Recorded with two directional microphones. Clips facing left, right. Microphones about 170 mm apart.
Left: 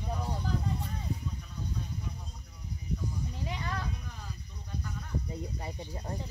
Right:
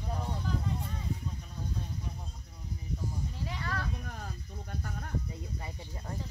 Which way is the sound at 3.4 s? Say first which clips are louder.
Even; 20° left (ahead or behind).